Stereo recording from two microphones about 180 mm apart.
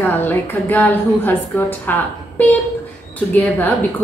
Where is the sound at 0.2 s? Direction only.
10° left (ahead or behind).